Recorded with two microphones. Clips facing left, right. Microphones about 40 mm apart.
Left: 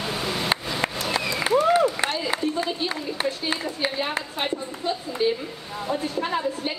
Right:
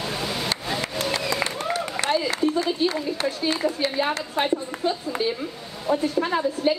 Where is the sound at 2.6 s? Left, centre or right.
Centre.